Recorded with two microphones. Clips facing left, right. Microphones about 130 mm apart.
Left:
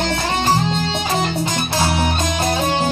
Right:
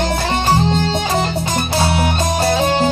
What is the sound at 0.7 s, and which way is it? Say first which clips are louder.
Music: right 4 dB; 45° right (ahead or behind).